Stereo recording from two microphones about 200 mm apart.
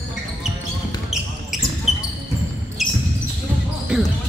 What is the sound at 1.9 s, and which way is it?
Basketball bounce, centre (ahead or behind).